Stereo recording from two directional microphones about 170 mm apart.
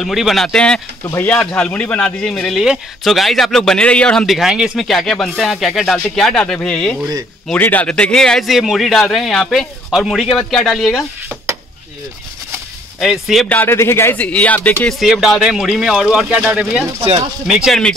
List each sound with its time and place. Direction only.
0.0 s speech: centre (ahead or behind)
13.0 s speech: centre (ahead or behind)
13.5 s speech: 10° left (ahead or behind); by 16.8 s 5° right (ahead or behind)
17.0 s speech: 35° right (ahead or behind)
17.5 s speech: centre (ahead or behind)